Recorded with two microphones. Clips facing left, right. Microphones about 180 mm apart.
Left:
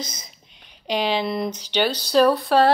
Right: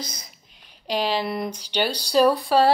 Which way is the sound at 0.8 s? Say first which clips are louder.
Left 2 dB; 5° right (ahead or behind).